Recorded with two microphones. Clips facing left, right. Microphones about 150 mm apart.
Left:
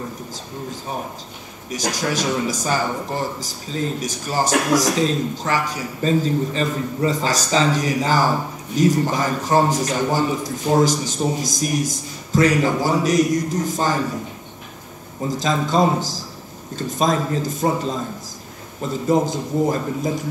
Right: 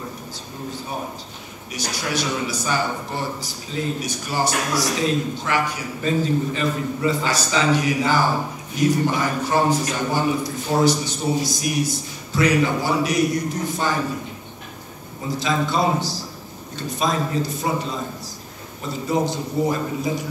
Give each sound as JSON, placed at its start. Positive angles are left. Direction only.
{"t": 1.7, "sound": "a man's voice", "side_deg": 40}
{"t": 15.2, "sound": "a man's voice", "side_deg": 40}